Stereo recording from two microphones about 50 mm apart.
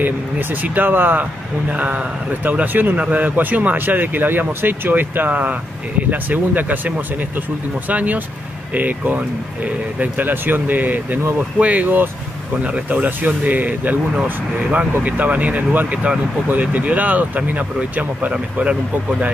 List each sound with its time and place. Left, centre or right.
0.0 s speech: right
1.7 s speech: right
7.9 s speech: right